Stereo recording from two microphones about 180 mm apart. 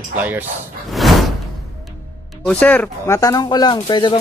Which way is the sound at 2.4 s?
5° left (ahead or behind).